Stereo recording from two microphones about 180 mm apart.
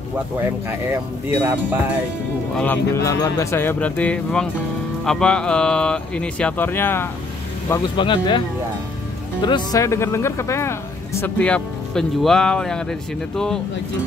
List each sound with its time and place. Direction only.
1.4 s speech: 10° right (ahead or behind)
2.5 s speech: 10° left (ahead or behind)
7.9 s speech: 25° left (ahead or behind)
9.4 s speech: 25° left (ahead or behind); by 12.8 s 5° left (ahead or behind)